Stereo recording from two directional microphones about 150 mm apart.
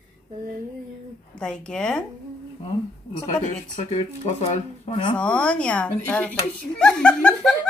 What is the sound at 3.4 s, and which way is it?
Speech, 45° left (ahead or behind).